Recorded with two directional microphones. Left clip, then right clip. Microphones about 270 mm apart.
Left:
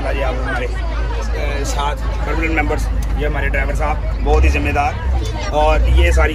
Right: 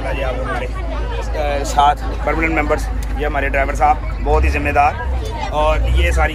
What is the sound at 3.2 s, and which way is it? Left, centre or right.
Speech, centre.